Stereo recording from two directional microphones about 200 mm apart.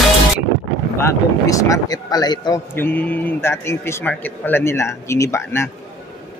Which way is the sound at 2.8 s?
10° left (ahead or behind).